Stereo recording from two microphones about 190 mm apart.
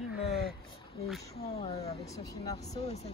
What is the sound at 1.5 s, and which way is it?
Speech, 30° left (ahead or behind).